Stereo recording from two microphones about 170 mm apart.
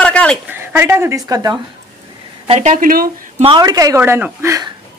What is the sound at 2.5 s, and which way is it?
Speech, 40° right (ahead or behind).